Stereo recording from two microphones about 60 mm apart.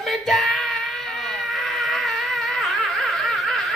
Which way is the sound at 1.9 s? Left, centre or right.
Centre.